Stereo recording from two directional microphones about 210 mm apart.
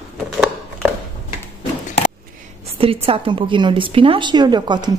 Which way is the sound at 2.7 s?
25° right (ahead or behind).